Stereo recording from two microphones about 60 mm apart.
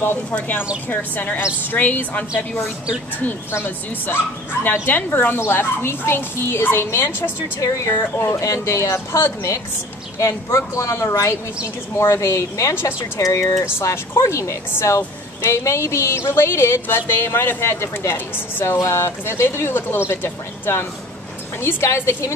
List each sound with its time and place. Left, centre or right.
0.3 s speech: left
3.3 s a woman's voice: left
7.6 s speech: left
7.9 s a woman's voice: left
8.3 s a woman's voice: left